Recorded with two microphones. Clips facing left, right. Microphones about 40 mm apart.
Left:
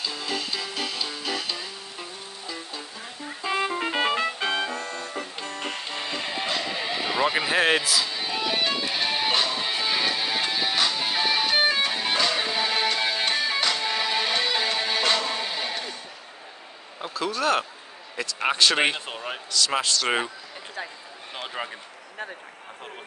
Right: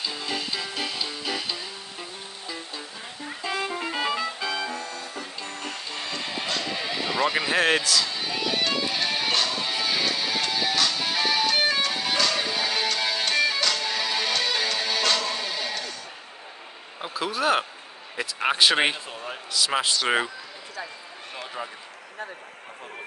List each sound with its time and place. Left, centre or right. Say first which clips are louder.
0.0 s music: even; centre
3.4 s music: left 3 dB; centre
3.8 s music: left 3 dB; left
5.9 s music: even; centre
17.0 s speech: even; centre
18.9 s a sound: left 2 dB; left
19.5 s a man's voice: even; centre
21.6 s a sound: left 2 dB; left